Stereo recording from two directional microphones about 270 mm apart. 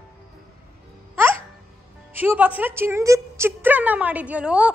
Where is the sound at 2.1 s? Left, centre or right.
Centre.